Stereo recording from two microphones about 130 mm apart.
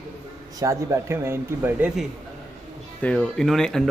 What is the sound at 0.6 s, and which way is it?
Speech, 25° right (ahead or behind).